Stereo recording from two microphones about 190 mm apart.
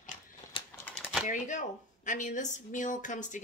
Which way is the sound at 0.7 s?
10° left (ahead or behind).